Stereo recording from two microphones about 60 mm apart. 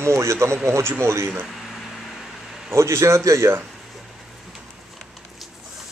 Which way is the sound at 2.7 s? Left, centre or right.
Right.